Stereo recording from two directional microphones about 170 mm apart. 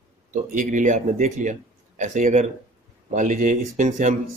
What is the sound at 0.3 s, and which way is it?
Speech, 50° right (ahead or behind).